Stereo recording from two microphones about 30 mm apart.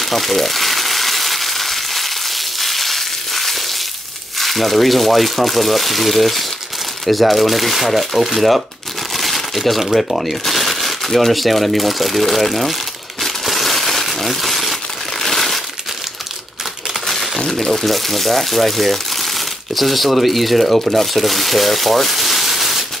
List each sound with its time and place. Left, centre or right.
0.0 s frying: centre
4.4 s speech: centre
9.1 s crumpling: centre
9.9 s speech: centre
13.2 s crumpling: centre
17.0 s crumpling: centre
17.5 s speech: centre